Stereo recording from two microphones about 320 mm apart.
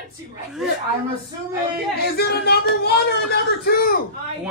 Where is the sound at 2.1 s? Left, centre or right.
Left.